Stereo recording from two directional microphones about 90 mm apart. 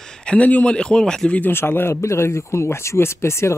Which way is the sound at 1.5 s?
25° left (ahead or behind).